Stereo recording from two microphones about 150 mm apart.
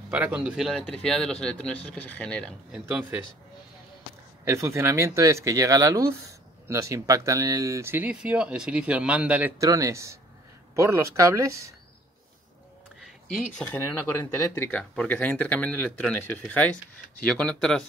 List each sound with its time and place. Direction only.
0.1 s speech: 10° right (ahead or behind); by 2.5 s 5° left (ahead or behind)
2.7 s speech: 10° right (ahead or behind)
4.5 s speech: 20° right (ahead or behind)
9.6 s speech: 20° right (ahead or behind)
13.0 s a sound: 5° left (ahead or behind)
13.7 s speech: 20° left (ahead or behind)